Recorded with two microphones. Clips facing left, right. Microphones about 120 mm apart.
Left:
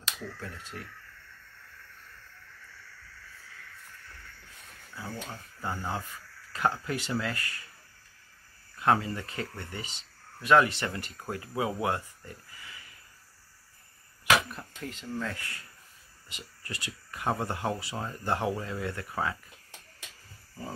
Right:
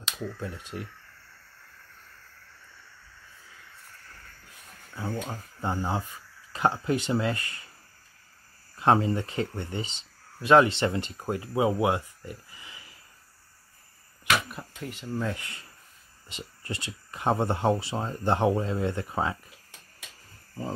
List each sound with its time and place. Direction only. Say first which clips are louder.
0.2 s speech: right 5 dB; 15° right (ahead or behind)
5.0 s speech: right 6 dB; 20° right (ahead or behind)
8.7 s speech: right 4 dB; 25° right (ahead or behind)
14.5 s speech: right 2 dB; 5° right (ahead or behind); by 19.3 s 25° right (ahead or behind)